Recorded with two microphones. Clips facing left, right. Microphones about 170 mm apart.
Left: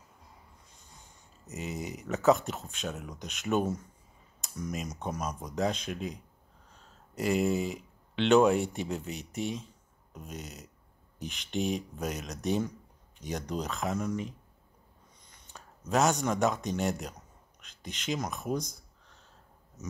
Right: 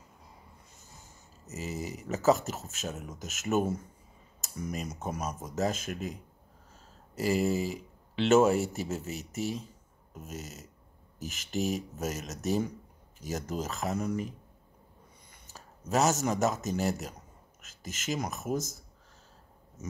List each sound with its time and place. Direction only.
1.0 s speech: centre (ahead or behind)
4.4 s computer keyboard: 5° right (ahead or behind)
4.9 s speech: 5° right (ahead or behind)
15.5 s a sound: 5° right (ahead or behind)
15.9 s speech: centre (ahead or behind)
19.8 s a sound: 50° right (ahead or behind)